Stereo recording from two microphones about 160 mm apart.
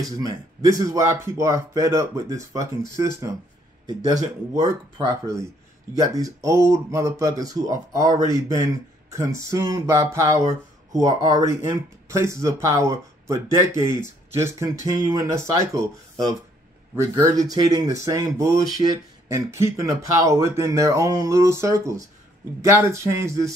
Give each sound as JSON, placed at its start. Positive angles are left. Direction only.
{"t": 0.0, "sound": "a man's voice", "side_deg": -20}